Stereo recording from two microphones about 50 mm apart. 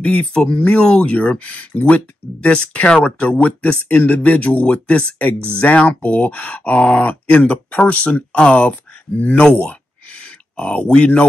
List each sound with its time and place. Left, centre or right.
0.0 s speech: left